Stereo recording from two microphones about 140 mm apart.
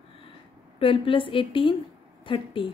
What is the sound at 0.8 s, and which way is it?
A woman's voice, 40° left (ahead or behind).